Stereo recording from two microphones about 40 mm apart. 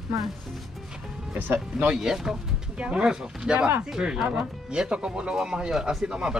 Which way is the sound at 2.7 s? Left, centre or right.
Right.